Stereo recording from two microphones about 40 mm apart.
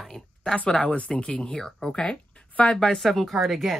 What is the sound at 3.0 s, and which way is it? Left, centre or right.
Speech, centre.